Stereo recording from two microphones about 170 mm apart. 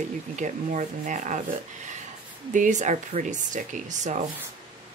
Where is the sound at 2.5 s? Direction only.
45° right (ahead or behind).